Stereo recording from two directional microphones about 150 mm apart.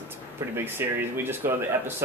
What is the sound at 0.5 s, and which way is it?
Speech, 15° right (ahead or behind).